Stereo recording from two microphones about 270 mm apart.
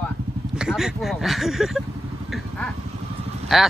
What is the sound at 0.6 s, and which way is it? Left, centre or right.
Speech, centre.